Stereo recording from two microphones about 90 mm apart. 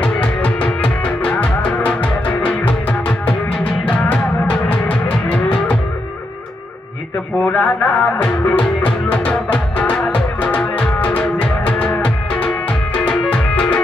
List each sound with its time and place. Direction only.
0.0 s music: 15° left (ahead or behind)
7.4 s music: 15° left (ahead or behind)